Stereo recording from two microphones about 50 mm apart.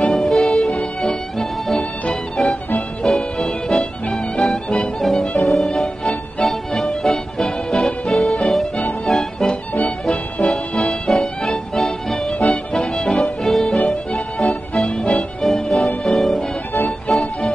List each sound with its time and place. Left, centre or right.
0.0 s music: centre
3.0 s music: centre
13.7 s music: centre
15.4 s music: centre